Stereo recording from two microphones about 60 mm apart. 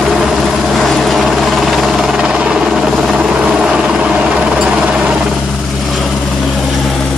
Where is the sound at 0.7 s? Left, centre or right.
Centre.